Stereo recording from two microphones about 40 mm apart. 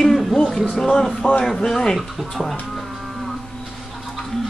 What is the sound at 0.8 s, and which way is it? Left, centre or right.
Speech, centre.